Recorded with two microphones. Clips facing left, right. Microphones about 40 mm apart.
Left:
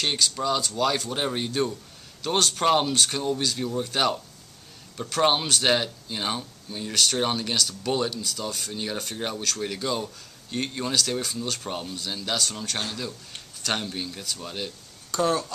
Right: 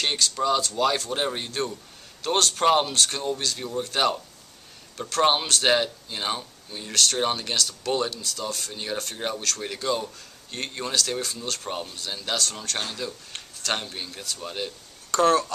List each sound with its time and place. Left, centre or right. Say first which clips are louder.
0.0 s speech: right 1 dB; centre
15.1 s speech: right 4 dB; right